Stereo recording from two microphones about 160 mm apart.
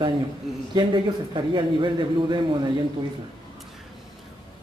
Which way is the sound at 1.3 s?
30° right (ahead or behind).